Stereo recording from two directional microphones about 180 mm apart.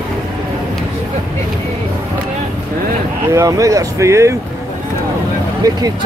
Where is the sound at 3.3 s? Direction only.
15° right (ahead or behind).